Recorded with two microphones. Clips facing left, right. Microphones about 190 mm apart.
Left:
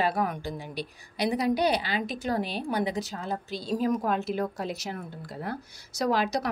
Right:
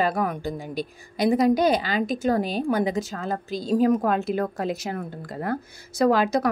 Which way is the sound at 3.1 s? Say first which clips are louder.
Right 4 dB; 90° right.